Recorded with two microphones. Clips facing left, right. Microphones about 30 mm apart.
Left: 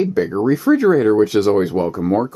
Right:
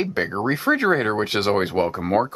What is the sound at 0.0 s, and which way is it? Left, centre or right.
Speech, right.